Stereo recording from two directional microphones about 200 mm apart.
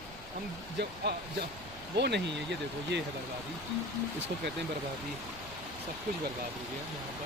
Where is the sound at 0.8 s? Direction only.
60° right (ahead or behind).